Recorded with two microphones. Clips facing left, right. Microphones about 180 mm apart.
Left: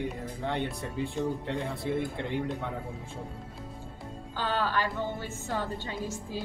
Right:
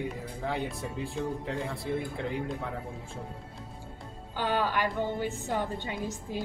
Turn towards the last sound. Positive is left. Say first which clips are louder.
# right 1 dB
turn(degrees=-15)  # may be behind; listen again after turning